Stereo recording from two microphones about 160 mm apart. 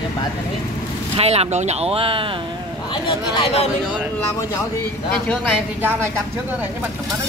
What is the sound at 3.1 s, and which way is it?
Speech, 35° left (ahead or behind).